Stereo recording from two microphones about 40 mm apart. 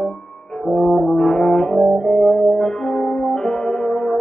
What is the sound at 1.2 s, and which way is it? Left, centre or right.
Brass instrument, centre.